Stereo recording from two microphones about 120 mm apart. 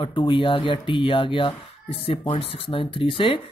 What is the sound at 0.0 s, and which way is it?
Speech, 45° left (ahead or behind).